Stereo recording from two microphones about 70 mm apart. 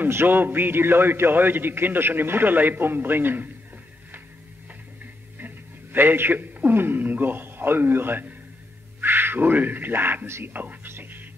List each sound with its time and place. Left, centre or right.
0.0 s a man's voice: right
5.4 s a man's voice: right